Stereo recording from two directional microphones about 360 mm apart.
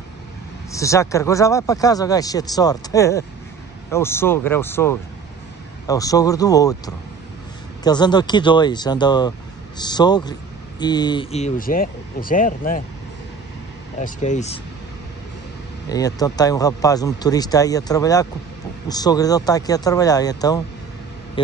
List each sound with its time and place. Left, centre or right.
0.7 s speech: centre
7.8 s speech: centre
13.9 s speech: centre
15.9 s speech: centre